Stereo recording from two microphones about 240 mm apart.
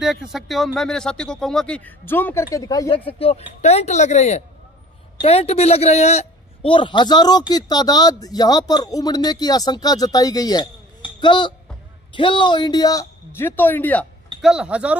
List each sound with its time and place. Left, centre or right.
0.0 s a man's voice: centre